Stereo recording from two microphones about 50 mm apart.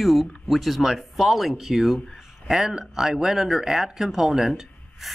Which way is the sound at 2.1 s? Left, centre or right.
Centre.